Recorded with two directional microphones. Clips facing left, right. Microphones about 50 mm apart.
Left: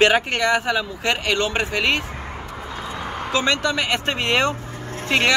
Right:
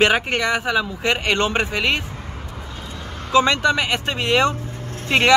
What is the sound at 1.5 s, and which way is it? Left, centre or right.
Speech, centre.